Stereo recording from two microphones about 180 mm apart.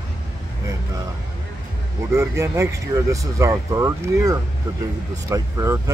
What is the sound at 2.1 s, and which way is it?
Speech, 15° right (ahead or behind).